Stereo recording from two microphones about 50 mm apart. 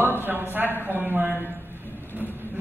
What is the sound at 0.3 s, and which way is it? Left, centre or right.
A man's voice, right.